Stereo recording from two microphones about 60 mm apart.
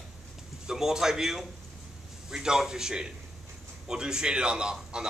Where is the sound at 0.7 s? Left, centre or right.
Centre.